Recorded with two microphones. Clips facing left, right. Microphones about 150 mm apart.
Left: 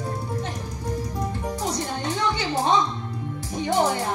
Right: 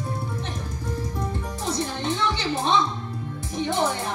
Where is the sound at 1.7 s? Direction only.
25° right (ahead or behind).